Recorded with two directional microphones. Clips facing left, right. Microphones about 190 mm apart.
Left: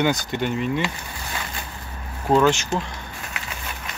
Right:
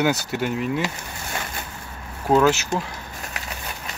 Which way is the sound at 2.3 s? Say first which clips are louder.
Even; 5° right (ahead or behind).